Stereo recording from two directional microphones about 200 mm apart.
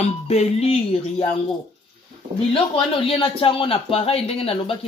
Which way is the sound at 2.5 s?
25° left (ahead or behind).